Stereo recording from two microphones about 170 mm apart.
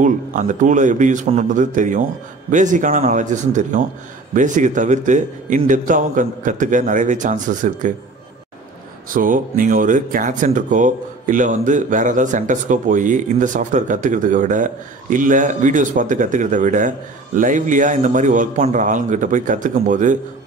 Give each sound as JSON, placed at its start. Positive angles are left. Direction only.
{"t": 0.0, "sound": "speech", "side_deg": -50}
{"t": 9.1, "sound": "speech", "side_deg": -50}